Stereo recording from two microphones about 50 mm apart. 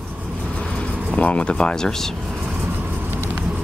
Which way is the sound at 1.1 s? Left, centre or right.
Left.